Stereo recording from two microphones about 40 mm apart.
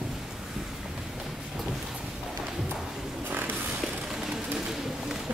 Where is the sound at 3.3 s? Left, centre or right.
Right.